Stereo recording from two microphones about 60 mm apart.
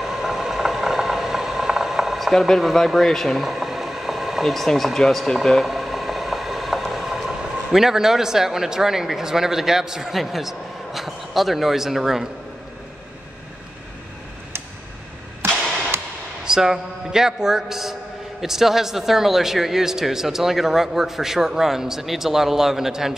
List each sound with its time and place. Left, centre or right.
0.0 s vehicle: centre
16.4 s speech: centre